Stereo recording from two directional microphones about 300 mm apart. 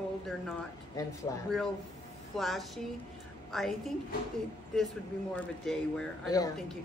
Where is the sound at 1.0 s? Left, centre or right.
Centre.